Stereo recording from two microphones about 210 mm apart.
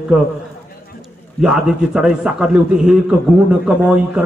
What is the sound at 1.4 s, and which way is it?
A man's voice, 5° right (ahead or behind).